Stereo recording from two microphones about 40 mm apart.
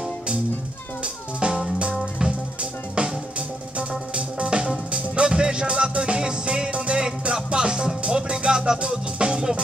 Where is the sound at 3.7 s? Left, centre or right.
Right.